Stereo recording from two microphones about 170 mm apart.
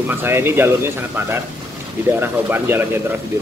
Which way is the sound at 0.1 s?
15° right (ahead or behind).